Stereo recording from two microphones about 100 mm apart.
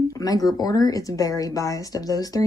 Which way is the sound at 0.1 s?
40° left (ahead or behind).